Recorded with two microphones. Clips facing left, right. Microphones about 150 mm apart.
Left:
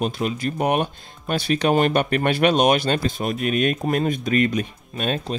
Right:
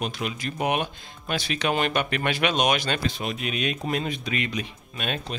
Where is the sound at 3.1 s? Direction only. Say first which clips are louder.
Left 6 dB; 50° left (ahead or behind).